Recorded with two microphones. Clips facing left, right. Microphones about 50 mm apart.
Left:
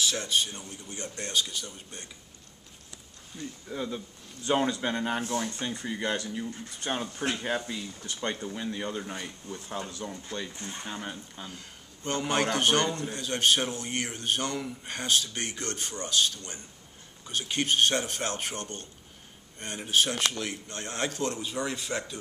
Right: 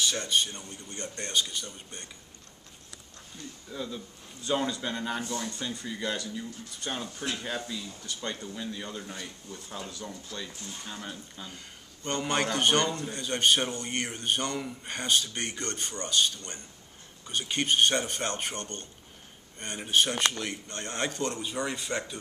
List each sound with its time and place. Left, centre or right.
0.0 s a man's voice: centre
3.7 s speech: left
9.8 s speech: left
11.4 s a man's voice: centre